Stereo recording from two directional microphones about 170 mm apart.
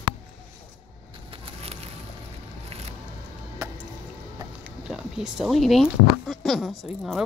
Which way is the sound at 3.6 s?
20° right (ahead or behind).